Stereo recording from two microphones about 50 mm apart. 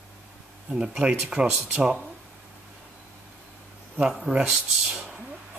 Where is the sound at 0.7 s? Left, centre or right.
Centre.